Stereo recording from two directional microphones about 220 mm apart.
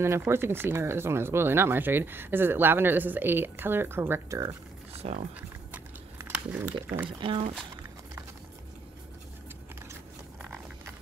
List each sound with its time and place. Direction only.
0.0 s speech: 10° right (ahead or behind)
4.9 s speech: 30° right (ahead or behind)
5.7 s a sound: 10° right (ahead or behind)
7.2 s speech: 25° right (ahead or behind)